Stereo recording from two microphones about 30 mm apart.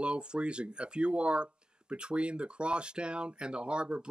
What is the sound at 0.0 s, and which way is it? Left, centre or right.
Speech, right.